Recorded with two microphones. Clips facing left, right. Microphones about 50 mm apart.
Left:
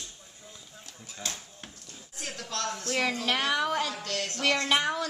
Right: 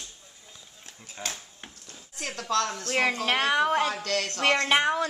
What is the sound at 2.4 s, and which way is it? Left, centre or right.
Speech, right.